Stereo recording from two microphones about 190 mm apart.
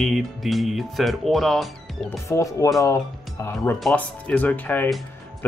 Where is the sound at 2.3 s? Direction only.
15° left (ahead or behind).